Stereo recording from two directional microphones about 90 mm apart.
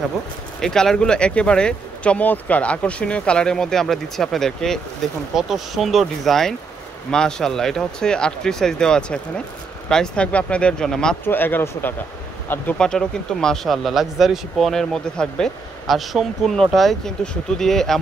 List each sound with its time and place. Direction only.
0.6 s speech: 5° left (ahead or behind)
11.2 s speech: 20° left (ahead or behind)
12.7 s speech: 10° left (ahead or behind)